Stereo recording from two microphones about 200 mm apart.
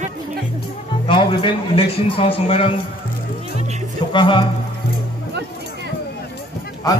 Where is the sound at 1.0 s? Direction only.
25° left (ahead or behind).